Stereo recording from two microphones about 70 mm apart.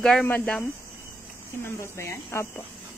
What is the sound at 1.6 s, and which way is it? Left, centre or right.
Speech, left.